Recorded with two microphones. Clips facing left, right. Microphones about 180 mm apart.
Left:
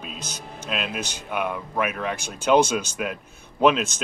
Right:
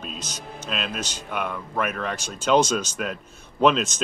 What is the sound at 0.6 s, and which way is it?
Speech, 5° left (ahead or behind).